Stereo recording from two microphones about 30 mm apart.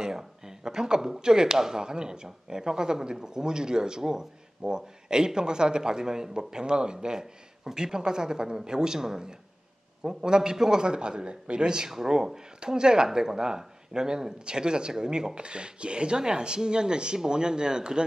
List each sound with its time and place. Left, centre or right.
0.7 s speech: right